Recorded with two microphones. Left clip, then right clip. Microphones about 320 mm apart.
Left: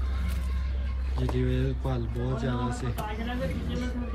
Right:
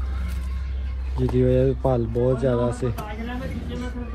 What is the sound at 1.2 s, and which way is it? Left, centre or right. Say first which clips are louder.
Speech: right 11 dB; centre.